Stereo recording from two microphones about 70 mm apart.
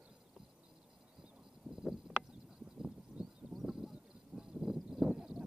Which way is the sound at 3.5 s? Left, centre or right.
Centre.